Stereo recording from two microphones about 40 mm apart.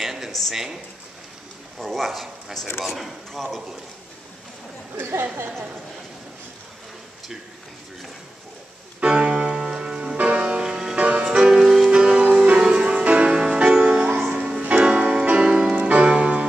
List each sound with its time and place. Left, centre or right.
0.0 s a sound: centre
0.3 s speech: centre
1.8 s speech: centre
9.0 s music: right
10.1 s music: right
10.6 s music: centre
11.0 s music: right
11.3 s music: centre
11.9 s music: right
12.7 s music: right
15.7 s music: right